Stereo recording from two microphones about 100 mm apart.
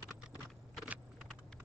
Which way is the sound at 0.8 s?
15° right (ahead or behind).